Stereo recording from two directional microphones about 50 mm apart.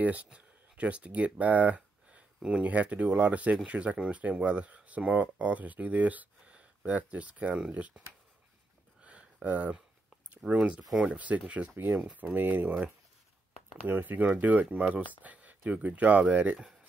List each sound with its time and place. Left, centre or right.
0.0 s speech: right
9.0 s a sound: right
10.5 s speech: right
11.8 s speech: right
13.8 s speech: right